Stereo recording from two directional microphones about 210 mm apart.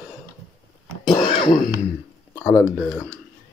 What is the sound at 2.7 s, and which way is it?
Speech, centre (ahead or behind).